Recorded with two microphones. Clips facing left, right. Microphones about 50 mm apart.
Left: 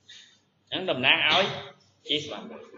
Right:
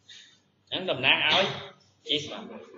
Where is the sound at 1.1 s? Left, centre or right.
Centre.